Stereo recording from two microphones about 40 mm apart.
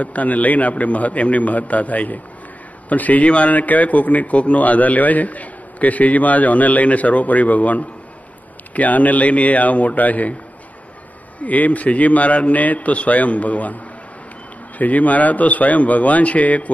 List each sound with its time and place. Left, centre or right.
0.0 s a man's voice: left
11.4 s a man's voice: left
14.8 s a man's voice: left